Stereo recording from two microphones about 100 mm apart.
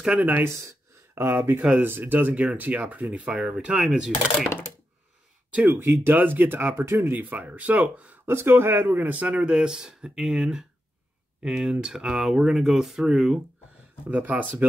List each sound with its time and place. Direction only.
0.0 s speech: 15° right (ahead or behind)
5.5 s speech: 15° right (ahead or behind)